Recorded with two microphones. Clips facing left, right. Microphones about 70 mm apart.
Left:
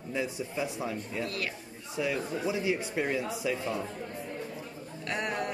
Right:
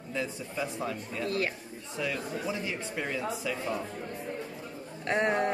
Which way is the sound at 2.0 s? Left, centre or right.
Centre.